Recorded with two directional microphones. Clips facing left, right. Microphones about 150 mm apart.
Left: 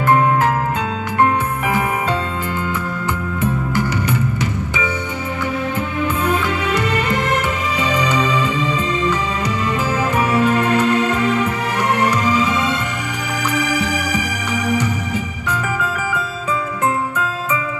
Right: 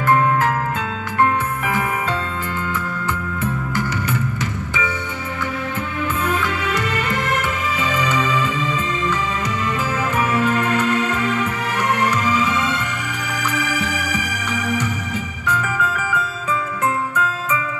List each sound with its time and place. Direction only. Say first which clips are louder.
0.1 s music: left 2 dB; 20° left (ahead or behind)
6.2 s music: left 3 dB; 20° left (ahead or behind)
10.5 s music: left 3 dB; 35° left (ahead or behind)
13.5 s music: left 4 dB; 35° left (ahead or behind)
15.6 s music: left 1 dB; 30° left (ahead or behind)